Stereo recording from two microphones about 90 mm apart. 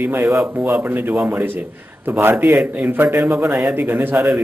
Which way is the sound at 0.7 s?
20° right (ahead or behind).